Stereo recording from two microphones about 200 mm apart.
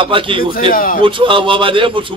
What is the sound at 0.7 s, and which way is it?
Speech, 45° left (ahead or behind).